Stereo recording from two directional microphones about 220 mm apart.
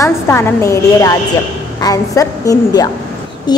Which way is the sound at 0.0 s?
10° left (ahead or behind).